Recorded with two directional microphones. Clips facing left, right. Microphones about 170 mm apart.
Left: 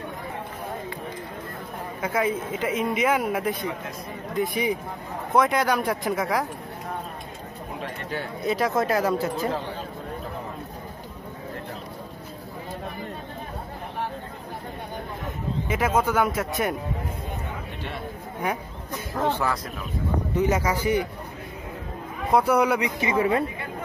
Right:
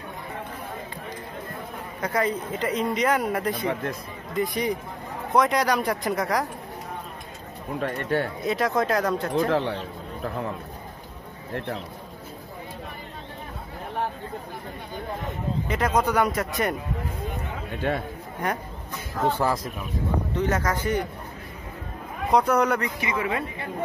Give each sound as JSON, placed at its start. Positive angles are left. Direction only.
{"t": 2.0, "sound": "speech", "side_deg": 5}
{"t": 3.5, "sound": "a man's voice", "side_deg": -65}
{"t": 4.4, "sound": "speech", "side_deg": 0}
{"t": 7.8, "sound": "a man's voice", "side_deg": -55}
{"t": 8.4, "sound": "speech", "side_deg": 0}
{"t": 9.5, "sound": "a sound", "side_deg": -75}
{"t": 11.5, "sound": "a man's voice", "side_deg": -65}
{"t": 15.7, "sound": "speech", "side_deg": 5}
{"t": 19.3, "sound": "speech", "side_deg": -30}
{"t": 20.3, "sound": "speech", "side_deg": 10}
{"t": 22.3, "sound": "speech", "side_deg": 10}
{"t": 22.9, "sound": "speech", "side_deg": 30}